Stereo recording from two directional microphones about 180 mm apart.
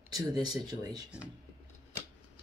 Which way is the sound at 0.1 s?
20° right (ahead or behind).